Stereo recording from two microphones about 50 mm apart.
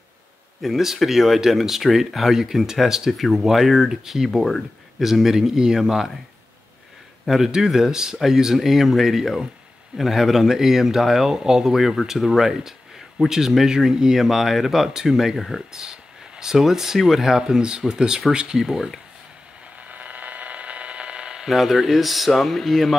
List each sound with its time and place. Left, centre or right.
0.6 s speech: centre
7.2 s speech: centre
15.7 s speech: centre
19.9 s mains hum: right
21.5 s speech: centre